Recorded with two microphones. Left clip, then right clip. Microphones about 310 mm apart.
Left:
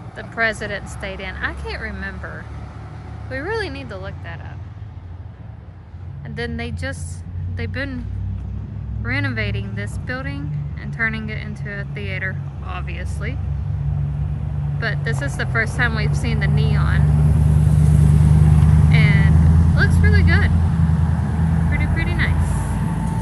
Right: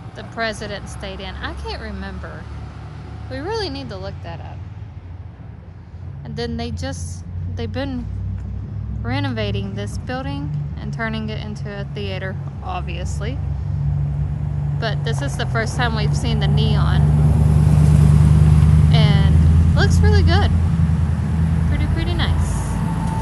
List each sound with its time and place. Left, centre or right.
0.4 s speech: centre
6.3 s speech: centre
9.0 s speech: centre
14.8 s speech: centre
17.1 s speech: right
17.6 s vehicle: centre
19.2 s vehicle: centre
19.7 s speech: centre
20.5 s vehicle: centre
21.4 s vehicle: centre